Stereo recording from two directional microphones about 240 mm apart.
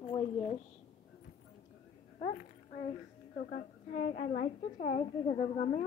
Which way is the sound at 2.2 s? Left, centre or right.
Left.